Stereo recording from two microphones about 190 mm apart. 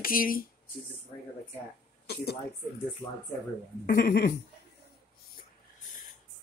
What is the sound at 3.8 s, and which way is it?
Speech, 55° left (ahead or behind).